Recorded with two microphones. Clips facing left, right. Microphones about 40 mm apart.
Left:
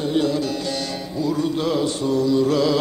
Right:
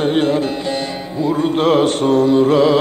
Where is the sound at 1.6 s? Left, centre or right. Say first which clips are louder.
Right 8 dB; right.